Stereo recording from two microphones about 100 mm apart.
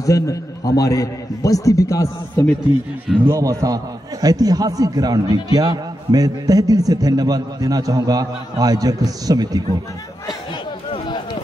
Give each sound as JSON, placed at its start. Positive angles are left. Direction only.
{"t": 0.0, "sound": "a man's voice", "side_deg": 35}
{"t": 3.3, "sound": "a man's voice", "side_deg": -35}